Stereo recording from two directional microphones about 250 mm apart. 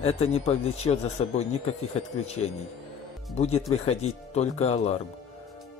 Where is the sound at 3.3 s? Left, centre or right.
Left.